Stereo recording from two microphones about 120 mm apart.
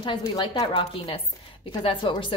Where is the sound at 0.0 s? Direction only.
45° left (ahead or behind).